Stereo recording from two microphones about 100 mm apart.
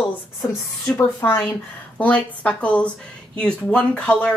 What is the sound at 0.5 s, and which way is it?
Speech, 25° left (ahead or behind).